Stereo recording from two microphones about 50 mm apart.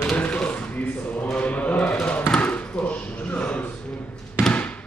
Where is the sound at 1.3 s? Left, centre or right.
Left.